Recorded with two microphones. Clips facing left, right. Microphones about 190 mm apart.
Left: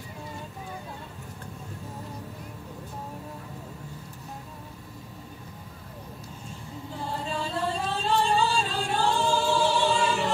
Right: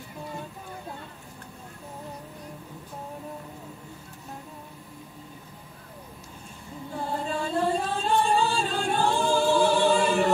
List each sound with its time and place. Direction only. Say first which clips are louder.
7.2 s music: right 4 dB; 50° right (ahead or behind)